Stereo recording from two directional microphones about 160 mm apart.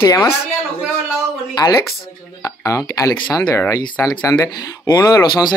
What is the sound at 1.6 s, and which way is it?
Speech, 25° left (ahead or behind).